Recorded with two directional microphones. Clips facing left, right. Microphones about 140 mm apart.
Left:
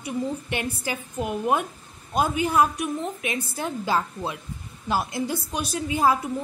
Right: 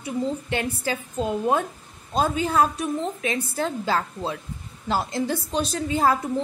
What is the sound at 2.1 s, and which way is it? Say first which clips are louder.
A woman's voice: even; 15° left (ahead or behind).